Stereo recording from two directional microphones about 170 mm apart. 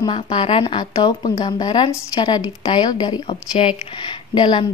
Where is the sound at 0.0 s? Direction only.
25° left (ahead or behind).